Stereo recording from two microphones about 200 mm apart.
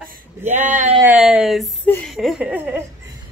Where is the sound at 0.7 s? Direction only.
35° right (ahead or behind).